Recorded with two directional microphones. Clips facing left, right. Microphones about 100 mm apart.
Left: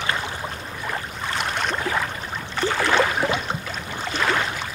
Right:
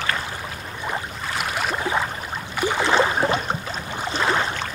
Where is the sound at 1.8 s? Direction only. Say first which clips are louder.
Right 1 dB; 20° right (ahead or behind).